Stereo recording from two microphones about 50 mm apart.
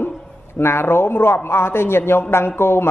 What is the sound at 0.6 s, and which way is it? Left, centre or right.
Speech, left.